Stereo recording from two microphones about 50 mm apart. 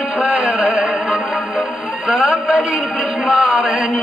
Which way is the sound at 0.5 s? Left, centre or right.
Centre.